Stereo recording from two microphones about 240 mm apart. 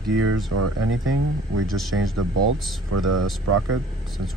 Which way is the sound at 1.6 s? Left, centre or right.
Centre.